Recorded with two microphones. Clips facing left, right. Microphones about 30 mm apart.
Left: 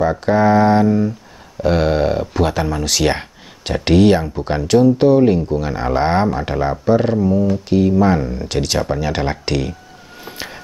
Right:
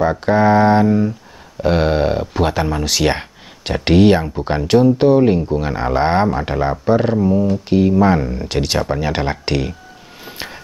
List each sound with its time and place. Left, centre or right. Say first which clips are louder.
0.0 s speech: even; centre